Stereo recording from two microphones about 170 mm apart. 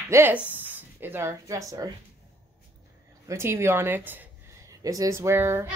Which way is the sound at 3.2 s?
15° right (ahead or behind).